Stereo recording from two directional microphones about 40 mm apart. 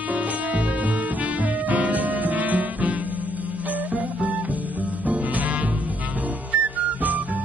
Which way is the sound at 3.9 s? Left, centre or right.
Right.